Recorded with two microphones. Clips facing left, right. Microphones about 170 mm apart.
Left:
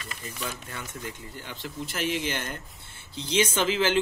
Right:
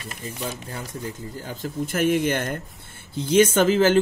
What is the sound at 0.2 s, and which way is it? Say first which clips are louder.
Speech: right 5 dB; 25° right (ahead or behind).